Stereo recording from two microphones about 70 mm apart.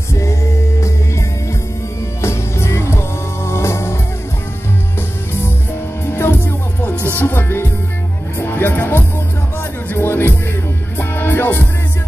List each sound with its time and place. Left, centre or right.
0.1 s music: left
2.2 s music: left
6.0 s music: left